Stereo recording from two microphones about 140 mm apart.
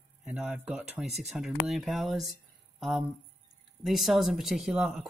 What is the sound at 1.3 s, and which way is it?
Speech, centre (ahead or behind).